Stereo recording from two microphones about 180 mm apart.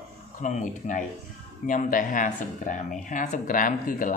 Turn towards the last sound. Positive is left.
turn(degrees=50)  # may be behind; listen again after turning